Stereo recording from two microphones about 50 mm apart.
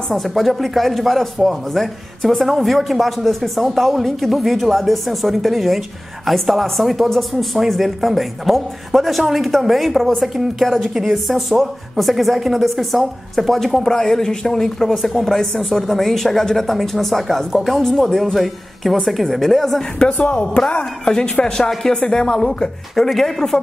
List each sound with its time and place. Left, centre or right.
0.1 s a woman's voice: centre
20.1 s a woman's voice: left; by 23.6 s centre